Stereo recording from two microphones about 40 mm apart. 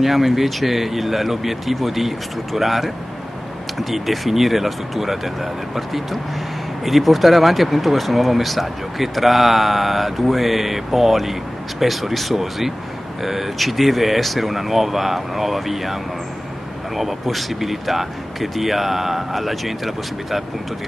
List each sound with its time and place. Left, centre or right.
0.0 s speech: centre